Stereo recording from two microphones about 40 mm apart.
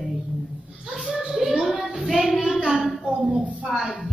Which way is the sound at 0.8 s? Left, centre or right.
Centre.